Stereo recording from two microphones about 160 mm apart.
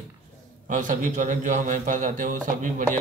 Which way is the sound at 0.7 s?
55° right (ahead or behind).